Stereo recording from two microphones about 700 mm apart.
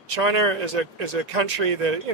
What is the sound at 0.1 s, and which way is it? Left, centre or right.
Speech, right.